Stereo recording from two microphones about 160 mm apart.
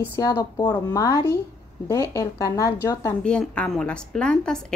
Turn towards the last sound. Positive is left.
turn(degrees=5)  # may be behind; listen again after turning